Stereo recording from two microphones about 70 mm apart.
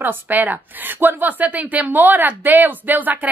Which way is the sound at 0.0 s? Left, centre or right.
Right.